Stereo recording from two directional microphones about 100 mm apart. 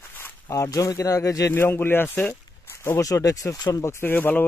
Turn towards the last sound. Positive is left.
turn(degrees=20)  # may be behind; listen again after turning